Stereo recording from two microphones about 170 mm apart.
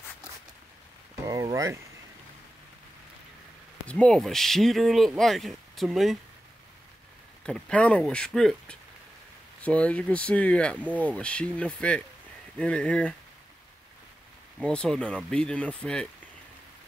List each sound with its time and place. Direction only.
1.2 s speech: 20° right (ahead or behind)
3.8 s speech: 5° left (ahead or behind)
7.4 s speech: 5° left (ahead or behind)
14.6 s speech: 5° left (ahead or behind)